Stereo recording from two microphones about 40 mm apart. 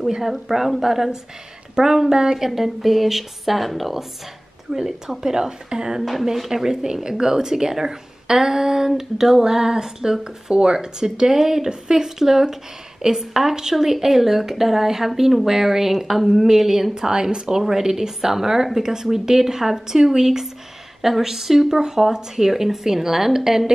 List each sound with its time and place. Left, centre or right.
0.0 s speech: centre
4.7 s speech: centre